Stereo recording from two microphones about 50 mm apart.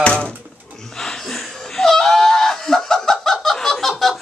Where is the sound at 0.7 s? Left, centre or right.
Centre.